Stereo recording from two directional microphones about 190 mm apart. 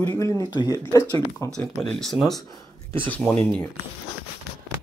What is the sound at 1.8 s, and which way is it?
Speech, centre (ahead or behind).